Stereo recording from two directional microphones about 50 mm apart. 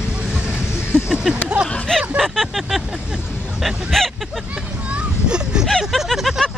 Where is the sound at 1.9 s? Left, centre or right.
Centre.